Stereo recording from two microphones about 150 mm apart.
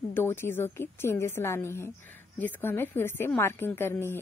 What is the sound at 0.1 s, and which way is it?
A woman's voice, 15° left (ahead or behind).